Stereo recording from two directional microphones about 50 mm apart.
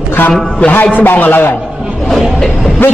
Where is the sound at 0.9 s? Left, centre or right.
Left.